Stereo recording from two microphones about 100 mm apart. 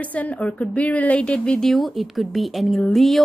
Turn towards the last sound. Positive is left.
turn(degrees=0)  # may be behind; listen again after turning